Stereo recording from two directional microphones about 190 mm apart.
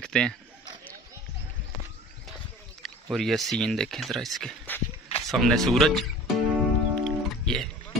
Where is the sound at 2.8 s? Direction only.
Centre (ahead or behind).